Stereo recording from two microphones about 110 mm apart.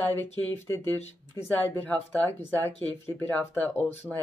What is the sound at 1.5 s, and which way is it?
Speech, 15° left (ahead or behind).